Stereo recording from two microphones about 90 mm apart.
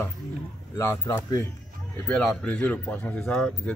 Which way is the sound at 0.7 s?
30° left (ahead or behind).